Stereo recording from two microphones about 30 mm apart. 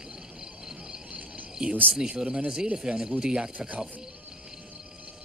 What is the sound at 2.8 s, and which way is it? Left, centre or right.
Speech, right.